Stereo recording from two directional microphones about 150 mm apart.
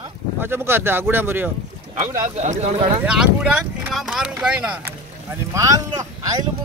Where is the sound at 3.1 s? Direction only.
5° right (ahead or behind); by 6.4 s 25° right (ahead or behind).